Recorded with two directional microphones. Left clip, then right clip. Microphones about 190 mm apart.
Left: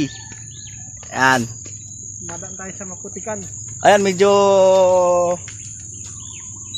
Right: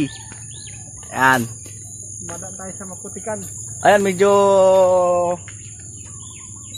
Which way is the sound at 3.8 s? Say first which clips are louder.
Left 1 dB; 15° left (ahead or behind).